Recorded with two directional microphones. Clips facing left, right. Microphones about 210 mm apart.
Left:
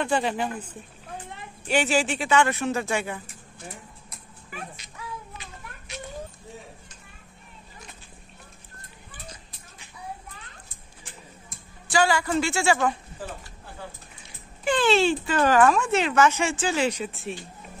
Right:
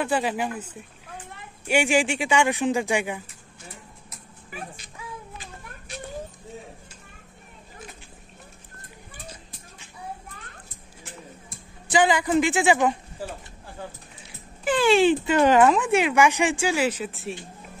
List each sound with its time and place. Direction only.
0.0 s speech: 5° right (ahead or behind)
1.7 s speech: 15° right (ahead or behind)
11.9 s a woman's voice: 20° right (ahead or behind)
14.6 s speech: 5° right (ahead or behind)